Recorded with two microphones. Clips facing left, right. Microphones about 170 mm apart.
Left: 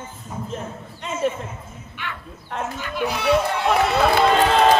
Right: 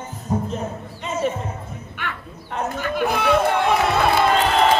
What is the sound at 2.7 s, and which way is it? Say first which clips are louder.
Speech: right 5 dB; 50° right (ahead or behind).